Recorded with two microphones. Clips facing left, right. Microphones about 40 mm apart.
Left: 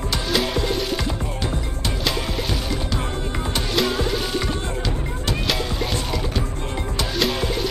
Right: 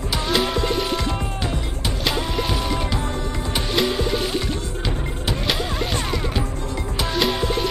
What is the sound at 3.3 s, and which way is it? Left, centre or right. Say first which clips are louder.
Music: even; left.